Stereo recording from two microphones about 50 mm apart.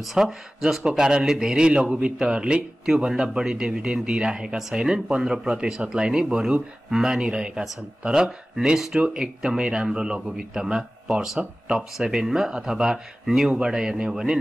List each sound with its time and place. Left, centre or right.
0.1 s a man's voice: centre
9.0 s a man's voice: centre